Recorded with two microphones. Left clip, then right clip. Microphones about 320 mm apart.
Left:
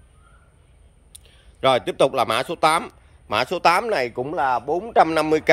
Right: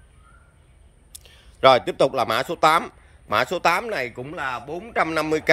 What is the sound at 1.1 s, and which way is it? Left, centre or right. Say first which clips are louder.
A man's voice: right 3 dB; centre.